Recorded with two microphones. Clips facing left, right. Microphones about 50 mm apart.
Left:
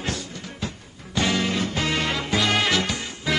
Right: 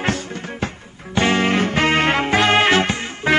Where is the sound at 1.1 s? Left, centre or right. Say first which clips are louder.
Right 6 dB; right.